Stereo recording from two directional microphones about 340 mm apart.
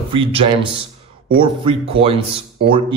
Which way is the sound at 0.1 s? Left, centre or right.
Centre.